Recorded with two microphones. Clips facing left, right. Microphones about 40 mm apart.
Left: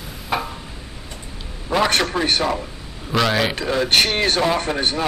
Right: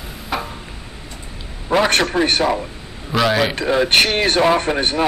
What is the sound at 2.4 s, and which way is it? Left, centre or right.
Speech, centre.